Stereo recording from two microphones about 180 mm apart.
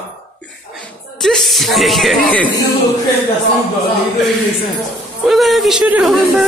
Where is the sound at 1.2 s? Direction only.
Centre (ahead or behind).